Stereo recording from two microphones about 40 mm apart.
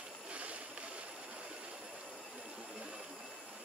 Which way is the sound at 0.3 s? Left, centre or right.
Right.